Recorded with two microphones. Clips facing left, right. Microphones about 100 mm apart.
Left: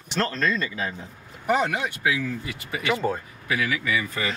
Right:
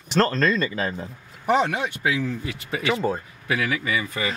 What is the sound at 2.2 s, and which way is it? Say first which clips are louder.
Speech: right 2 dB; 30° right (ahead or behind).